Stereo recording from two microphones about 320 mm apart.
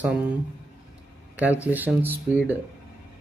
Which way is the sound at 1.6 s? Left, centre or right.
Centre.